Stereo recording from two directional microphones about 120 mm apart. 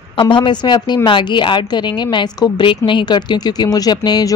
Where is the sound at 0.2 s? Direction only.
40° left (ahead or behind).